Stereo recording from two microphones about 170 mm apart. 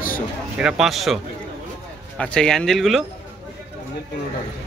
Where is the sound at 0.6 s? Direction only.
5° right (ahead or behind).